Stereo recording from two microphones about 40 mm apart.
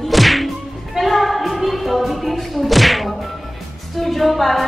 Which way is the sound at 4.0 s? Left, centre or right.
Centre.